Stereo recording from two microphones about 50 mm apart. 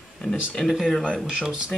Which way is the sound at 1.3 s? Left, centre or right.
Centre.